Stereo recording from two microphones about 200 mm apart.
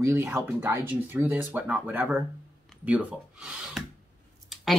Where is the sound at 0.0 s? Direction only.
10° right (ahead or behind).